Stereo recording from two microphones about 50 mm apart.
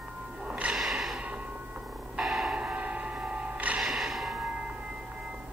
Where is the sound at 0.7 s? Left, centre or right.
Centre.